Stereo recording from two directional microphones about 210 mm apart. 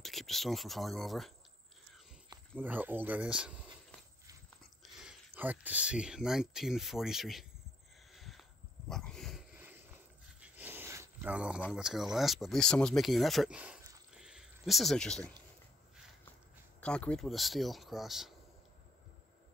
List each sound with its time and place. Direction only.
0.0 s speech: centre (ahead or behind)
2.5 s speech: 10° right (ahead or behind)
5.0 s speech: 10° right (ahead or behind)
8.1 s a sound: centre (ahead or behind)
11.7 s speech: centre (ahead or behind)
16.8 s speech: 5° left (ahead or behind)